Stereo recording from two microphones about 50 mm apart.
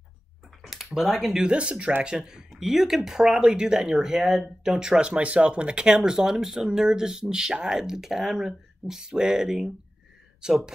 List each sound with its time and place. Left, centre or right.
0.6 s a sound: centre
1.5 s speech: right
2.5 s speech: centre